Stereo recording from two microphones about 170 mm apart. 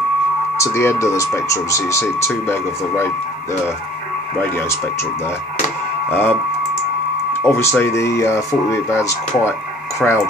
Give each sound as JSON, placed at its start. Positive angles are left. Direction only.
{"t": 0.6, "sound": "speech", "side_deg": 15}
{"t": 4.4, "sound": "speech", "side_deg": 10}
{"t": 6.0, "sound": "speech", "side_deg": 10}
{"t": 7.4, "sound": "speech", "side_deg": 10}
{"t": 10.0, "sound": "speech", "side_deg": 5}